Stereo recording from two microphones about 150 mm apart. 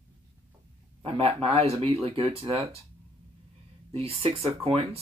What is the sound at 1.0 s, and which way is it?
Speech, 40° right (ahead or behind).